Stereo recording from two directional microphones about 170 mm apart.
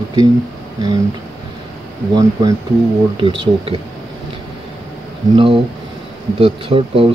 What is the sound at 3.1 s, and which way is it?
Speech, 30° right (ahead or behind).